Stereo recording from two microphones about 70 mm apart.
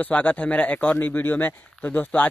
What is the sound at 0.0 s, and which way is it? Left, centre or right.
Speech, left.